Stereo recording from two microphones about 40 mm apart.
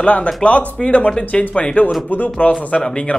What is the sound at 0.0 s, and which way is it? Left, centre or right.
Speech, left.